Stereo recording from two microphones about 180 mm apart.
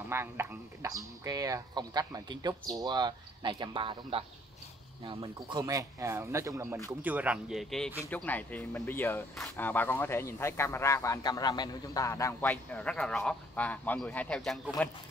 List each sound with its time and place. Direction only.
0.1 s speech: 15° right (ahead or behind); by 15.0 s 10° left (ahead or behind)